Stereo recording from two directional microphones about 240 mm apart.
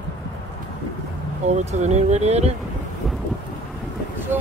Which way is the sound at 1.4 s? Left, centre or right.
Right.